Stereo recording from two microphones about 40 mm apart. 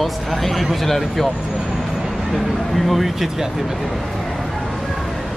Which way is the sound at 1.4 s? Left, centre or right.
Centre.